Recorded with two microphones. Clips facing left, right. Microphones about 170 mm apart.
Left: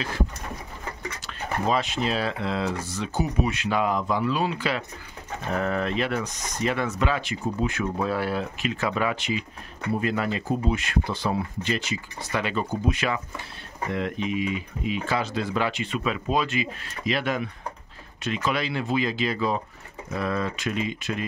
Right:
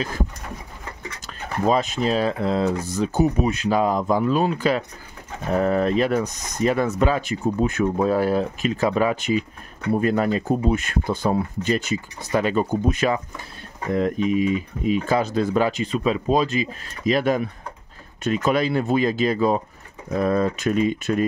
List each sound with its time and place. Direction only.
1.2 s speech: 45° right (ahead or behind)